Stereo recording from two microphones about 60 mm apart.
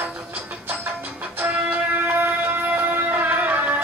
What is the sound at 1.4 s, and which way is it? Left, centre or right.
Music, right.